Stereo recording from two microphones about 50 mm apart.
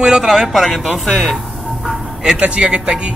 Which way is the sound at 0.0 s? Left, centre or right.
Centre.